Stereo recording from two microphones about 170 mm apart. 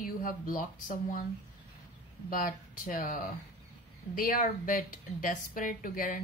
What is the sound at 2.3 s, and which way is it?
A woman's voice, 55° left (ahead or behind).